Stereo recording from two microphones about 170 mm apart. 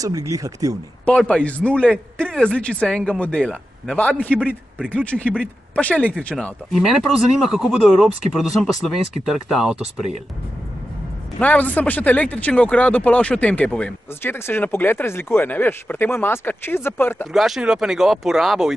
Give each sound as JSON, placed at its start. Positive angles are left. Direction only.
{"t": 0.0, "sound": "speech", "side_deg": -20}
{"t": 1.0, "sound": "a man's voice", "side_deg": 5}
{"t": 11.3, "sound": "speech", "side_deg": 10}
{"t": 17.3, "sound": "a man's voice", "side_deg": 0}